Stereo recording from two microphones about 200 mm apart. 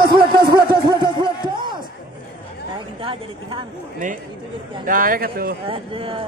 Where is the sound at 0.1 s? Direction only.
20° right (ahead or behind).